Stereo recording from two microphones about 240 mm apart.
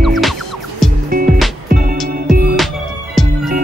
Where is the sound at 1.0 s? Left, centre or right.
Right.